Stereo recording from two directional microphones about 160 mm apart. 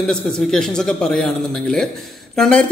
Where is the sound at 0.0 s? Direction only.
5° left (ahead or behind).